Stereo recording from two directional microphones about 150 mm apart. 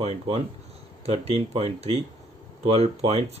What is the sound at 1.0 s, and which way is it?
Speech, 40° right (ahead or behind).